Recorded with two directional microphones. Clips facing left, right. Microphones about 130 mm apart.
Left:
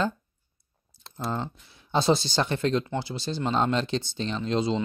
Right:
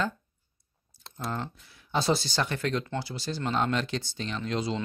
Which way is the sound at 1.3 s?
25° left (ahead or behind).